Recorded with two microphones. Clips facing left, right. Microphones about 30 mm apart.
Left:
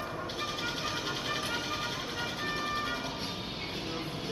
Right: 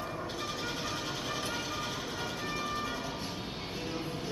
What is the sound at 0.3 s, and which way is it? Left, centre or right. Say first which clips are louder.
Train: left 2 dB; left.